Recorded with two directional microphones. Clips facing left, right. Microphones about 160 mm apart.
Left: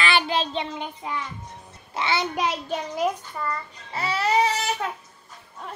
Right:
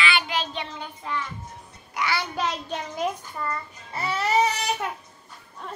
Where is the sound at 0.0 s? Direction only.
35° left (ahead or behind).